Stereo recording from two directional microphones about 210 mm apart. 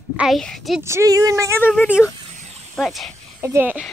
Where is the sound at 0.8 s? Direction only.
15° right (ahead or behind).